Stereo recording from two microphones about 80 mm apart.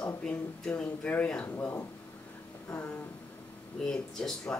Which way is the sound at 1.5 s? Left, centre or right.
Left.